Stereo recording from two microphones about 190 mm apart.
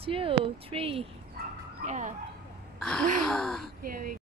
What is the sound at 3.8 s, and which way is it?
Speech, 50° right (ahead or behind).